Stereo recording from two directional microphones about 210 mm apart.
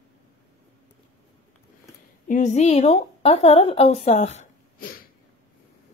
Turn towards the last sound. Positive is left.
turn(degrees=45)  # may be behind; listen again after turning